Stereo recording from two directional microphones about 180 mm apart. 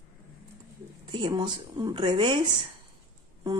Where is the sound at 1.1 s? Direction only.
25° right (ahead or behind).